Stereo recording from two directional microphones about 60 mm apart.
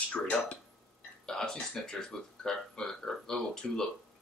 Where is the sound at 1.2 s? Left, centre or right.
Centre.